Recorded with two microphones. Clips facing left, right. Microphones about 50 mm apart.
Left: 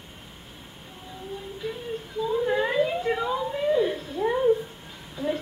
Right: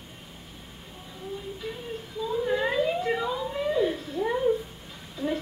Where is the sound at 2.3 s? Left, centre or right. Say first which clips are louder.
Left 2 dB; centre.